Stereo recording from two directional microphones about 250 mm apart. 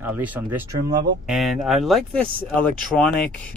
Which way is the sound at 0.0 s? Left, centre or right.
Centre.